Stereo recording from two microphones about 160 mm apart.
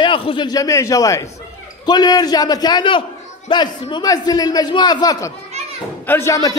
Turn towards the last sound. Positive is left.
turn(degrees=20)  # may be behind; listen again after turning